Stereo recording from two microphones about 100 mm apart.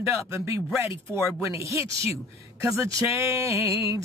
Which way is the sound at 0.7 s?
30° right (ahead or behind).